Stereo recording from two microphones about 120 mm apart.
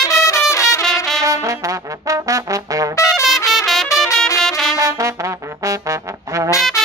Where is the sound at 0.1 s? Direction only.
25° left (ahead or behind).